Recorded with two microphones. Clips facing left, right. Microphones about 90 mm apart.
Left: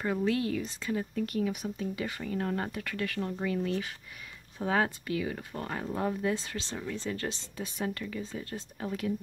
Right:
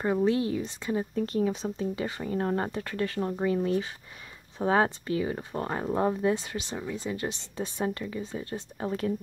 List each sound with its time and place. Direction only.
0.0 s speech: 25° right (ahead or behind)